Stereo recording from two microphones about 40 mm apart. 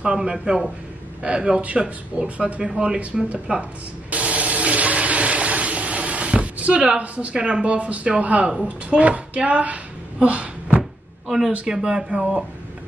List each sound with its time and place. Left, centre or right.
0.0 s a woman's voice: right
3.1 s speech: centre
4.1 s toilet flush: right
7.0 s a woman's voice: right
7.3 s speech: right
7.6 s a woman's voice: right
10.8 s a sound: centre
11.6 s speech: centre